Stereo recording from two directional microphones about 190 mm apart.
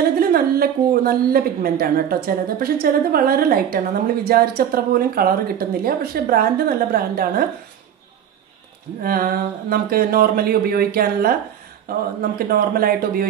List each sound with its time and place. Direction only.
0.3 s a woman's voice: 50° right (ahead or behind)
9.0 s a woman's voice: 50° right (ahead or behind)